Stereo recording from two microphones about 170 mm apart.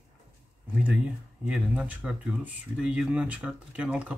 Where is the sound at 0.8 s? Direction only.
5° right (ahead or behind).